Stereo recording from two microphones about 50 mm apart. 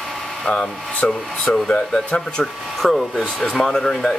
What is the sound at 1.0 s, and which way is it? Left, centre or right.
Speech, left.